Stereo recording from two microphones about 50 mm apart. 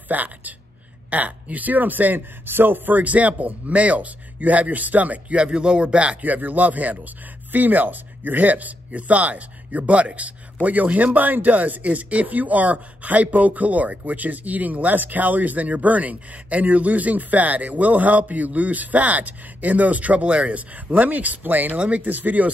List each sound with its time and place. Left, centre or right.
0.1 s speech: right
6.2 s speech: right
21.7 s speech: right